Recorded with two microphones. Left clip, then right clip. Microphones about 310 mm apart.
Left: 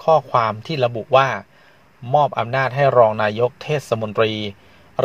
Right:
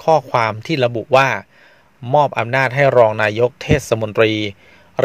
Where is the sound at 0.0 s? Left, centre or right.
Right.